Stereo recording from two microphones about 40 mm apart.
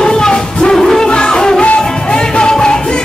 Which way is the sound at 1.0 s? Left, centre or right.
Left.